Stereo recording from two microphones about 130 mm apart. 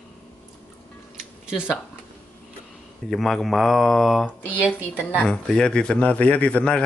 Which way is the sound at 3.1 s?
Centre (ahead or behind).